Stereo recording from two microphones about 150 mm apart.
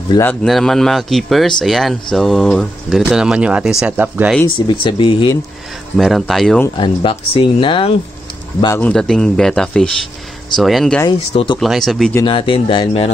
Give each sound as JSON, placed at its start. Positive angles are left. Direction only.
{"t": 0.2, "sound": "speech", "side_deg": 5}
{"t": 4.6, "sound": "speech", "side_deg": 30}
{"t": 5.9, "sound": "speech", "side_deg": 0}
{"t": 6.8, "sound": "speech", "side_deg": 35}
{"t": 8.7, "sound": "speech", "side_deg": 5}
{"t": 11.3, "sound": "speech", "side_deg": 30}
{"t": 11.6, "sound": "speech", "side_deg": 0}
{"t": 12.3, "sound": "speech", "side_deg": 35}